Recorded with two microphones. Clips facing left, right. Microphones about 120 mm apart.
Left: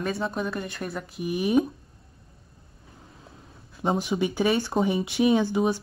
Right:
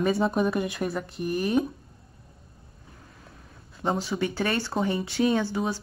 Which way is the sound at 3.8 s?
15° left (ahead or behind).